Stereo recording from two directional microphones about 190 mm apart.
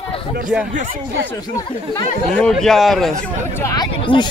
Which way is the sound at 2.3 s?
5° left (ahead or behind).